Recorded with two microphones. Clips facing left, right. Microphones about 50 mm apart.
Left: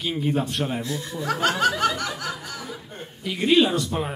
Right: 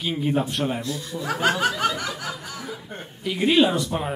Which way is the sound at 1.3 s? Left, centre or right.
Centre.